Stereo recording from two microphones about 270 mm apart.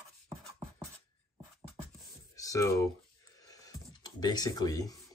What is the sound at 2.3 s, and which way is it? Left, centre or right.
Speech, centre.